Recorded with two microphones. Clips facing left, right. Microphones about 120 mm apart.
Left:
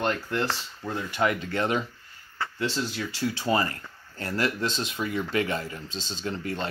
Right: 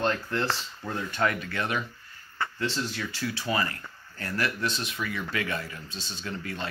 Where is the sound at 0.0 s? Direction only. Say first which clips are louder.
Left 1 dB; 15° left (ahead or behind).